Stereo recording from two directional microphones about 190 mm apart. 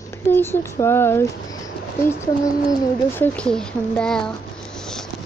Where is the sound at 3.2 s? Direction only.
5° left (ahead or behind).